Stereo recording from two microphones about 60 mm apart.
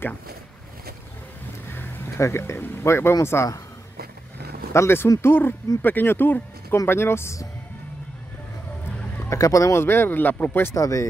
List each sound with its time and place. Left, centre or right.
2.1 s speech: left
2.5 s speech: left
4.7 s speech: left
9.3 s speech: left
9.8 s speech: left
10.7 s speech: left